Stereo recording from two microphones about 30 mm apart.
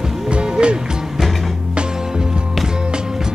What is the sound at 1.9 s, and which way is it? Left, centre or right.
Music, right.